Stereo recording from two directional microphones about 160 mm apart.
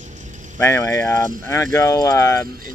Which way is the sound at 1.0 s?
15° left (ahead or behind).